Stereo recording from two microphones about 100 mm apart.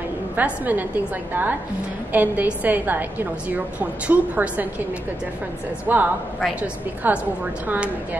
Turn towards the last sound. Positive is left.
turn(degrees=-20)  # may be behind; listen again after turning